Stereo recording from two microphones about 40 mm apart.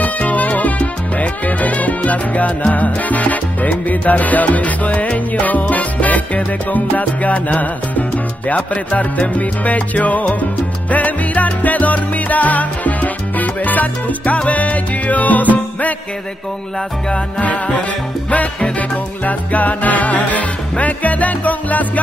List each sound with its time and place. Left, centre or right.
0.0 s music: left
17.4 s music: left
18.8 s music: left